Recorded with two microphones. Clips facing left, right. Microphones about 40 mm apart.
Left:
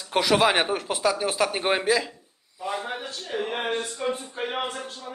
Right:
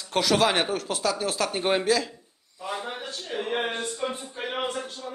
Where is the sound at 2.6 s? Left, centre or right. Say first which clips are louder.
Left 2 dB; centre.